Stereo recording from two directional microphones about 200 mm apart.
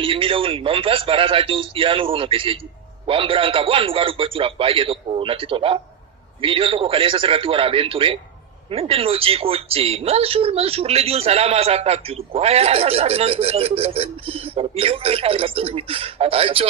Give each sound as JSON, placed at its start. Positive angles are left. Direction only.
{"t": 0.0, "sound": "speech", "side_deg": -25}